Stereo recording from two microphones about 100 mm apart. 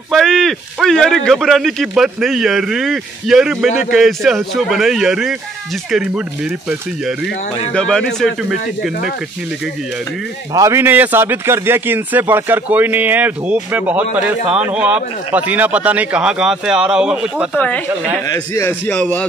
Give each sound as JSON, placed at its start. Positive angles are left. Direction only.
{"t": 0.1, "sound": "speech", "side_deg": 5}
{"t": 7.7, "sound": "speech", "side_deg": 5}
{"t": 10.5, "sound": "a man's voice", "side_deg": -30}
{"t": 17.6, "sound": "a man's voice", "side_deg": 15}
{"t": 18.3, "sound": "a man's voice", "side_deg": 30}
{"t": 18.9, "sound": "a man's voice", "side_deg": 15}